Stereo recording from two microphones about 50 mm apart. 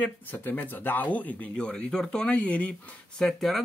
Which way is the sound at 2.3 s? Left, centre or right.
Left.